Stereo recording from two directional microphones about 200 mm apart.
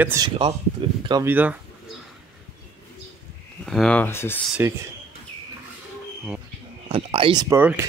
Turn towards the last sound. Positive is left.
turn(degrees=-10)  # may be behind; listen again after turning